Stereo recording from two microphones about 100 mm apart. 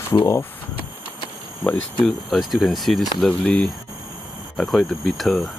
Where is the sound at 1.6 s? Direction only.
15° left (ahead or behind).